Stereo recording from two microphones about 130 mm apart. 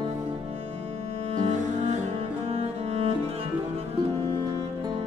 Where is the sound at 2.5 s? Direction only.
55° right (ahead or behind).